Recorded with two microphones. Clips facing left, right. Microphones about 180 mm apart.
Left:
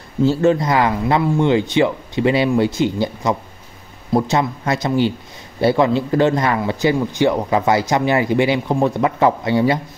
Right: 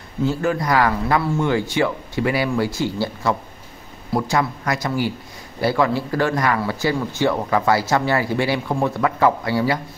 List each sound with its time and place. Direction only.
0.2 s speech: 25° left (ahead or behind)